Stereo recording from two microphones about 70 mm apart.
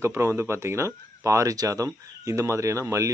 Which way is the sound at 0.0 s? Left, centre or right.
Right.